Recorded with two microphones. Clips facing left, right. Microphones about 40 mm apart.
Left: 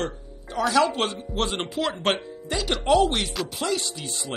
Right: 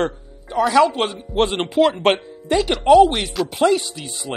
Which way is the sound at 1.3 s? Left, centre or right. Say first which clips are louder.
Right 12 dB; right.